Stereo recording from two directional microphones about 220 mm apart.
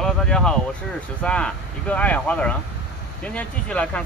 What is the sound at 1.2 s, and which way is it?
Speech, 5° left (ahead or behind).